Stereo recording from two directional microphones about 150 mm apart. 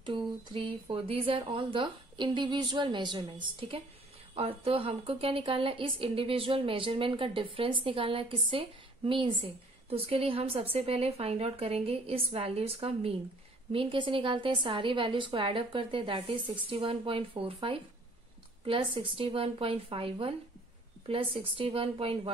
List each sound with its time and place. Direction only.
0.0 s a woman's voice: 35° right (ahead or behind)